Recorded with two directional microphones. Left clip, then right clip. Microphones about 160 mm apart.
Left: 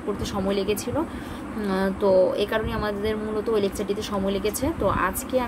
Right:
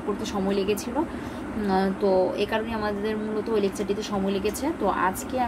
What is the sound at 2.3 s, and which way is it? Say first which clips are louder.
Speech: left 2 dB; 25° left (ahead or behind).